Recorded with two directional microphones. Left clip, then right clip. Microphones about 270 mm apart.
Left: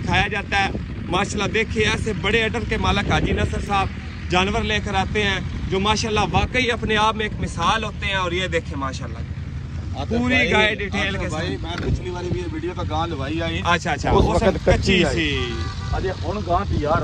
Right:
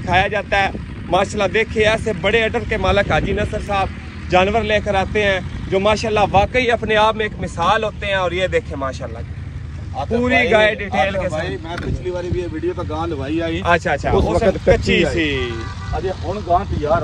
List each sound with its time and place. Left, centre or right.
0.0 s speech: centre
10.2 s speech: centre; by 13.7 s left
13.7 s speech: centre
14.4 s speech: left
14.7 s speech: centre
16.1 s speech: centre